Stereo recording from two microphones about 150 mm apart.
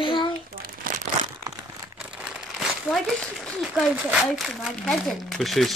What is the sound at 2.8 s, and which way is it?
Speech, 5° left (ahead or behind).